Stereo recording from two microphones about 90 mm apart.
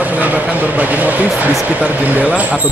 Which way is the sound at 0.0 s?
20° right (ahead or behind).